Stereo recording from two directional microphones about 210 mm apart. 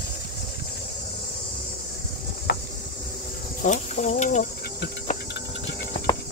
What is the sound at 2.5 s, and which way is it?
Insect, 50° left (ahead or behind).